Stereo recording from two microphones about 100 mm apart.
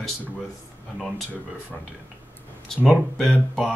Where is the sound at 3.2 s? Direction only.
5° left (ahead or behind).